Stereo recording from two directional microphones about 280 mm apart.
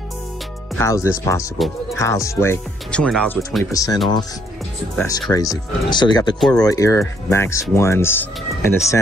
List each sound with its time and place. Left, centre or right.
0.7 s speech: centre